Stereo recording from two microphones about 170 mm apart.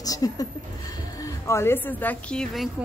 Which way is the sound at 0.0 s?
20° left (ahead or behind).